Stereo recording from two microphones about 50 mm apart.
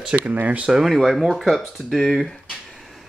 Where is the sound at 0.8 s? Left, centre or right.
Centre.